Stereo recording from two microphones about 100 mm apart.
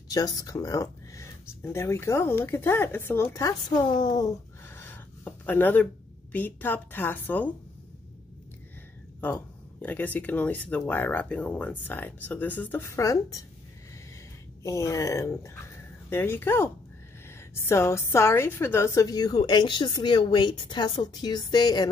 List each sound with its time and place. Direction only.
0.1 s a woman's voice: 40° left (ahead or behind)
3.6 s speech: 45° left (ahead or behind)
4.6 s a sound: 20° left (ahead or behind)
6.3 s speech: 20° left (ahead or behind)
9.2 s speech: 15° left (ahead or behind)
12.8 s a woman's voice: 30° left (ahead or behind)
14.6 s speech: 30° left (ahead or behind)
19.0 s speech: 45° left (ahead or behind)